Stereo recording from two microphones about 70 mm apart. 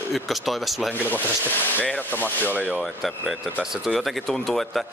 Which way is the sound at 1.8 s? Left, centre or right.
Left.